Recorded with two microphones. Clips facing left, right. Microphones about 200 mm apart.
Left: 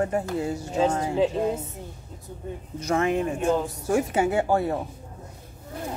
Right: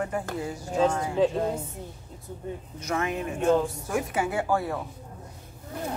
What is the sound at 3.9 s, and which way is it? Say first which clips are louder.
Speech: left 5 dB; 25° left (ahead or behind).